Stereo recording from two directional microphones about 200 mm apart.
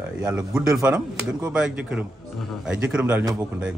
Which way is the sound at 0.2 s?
15° right (ahead or behind).